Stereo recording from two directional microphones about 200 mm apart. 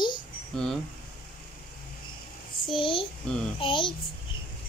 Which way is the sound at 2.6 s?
25° left (ahead or behind).